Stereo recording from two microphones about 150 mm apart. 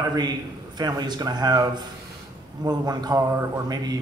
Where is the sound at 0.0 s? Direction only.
30° right (ahead or behind).